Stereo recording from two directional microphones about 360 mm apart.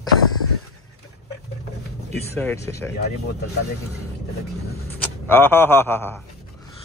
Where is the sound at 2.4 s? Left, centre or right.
Centre.